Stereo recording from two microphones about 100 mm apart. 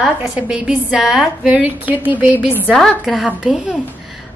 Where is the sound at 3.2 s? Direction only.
10° right (ahead or behind).